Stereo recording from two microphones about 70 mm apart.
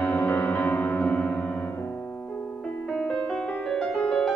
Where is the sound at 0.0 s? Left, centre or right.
Left.